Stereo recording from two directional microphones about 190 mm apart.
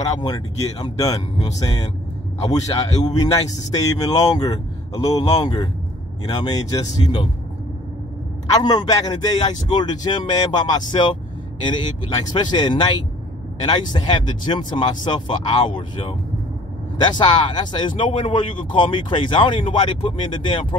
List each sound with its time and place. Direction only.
0.1 s speech: 20° left (ahead or behind)
3.1 s speech: 20° left (ahead or behind)
8.5 s speech: 20° left (ahead or behind)